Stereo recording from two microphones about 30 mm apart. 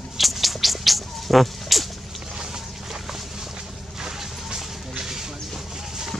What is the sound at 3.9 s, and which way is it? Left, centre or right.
Music, centre.